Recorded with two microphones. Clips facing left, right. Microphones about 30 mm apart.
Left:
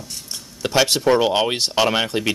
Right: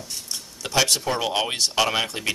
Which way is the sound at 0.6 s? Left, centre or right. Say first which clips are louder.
Left 4 dB; centre.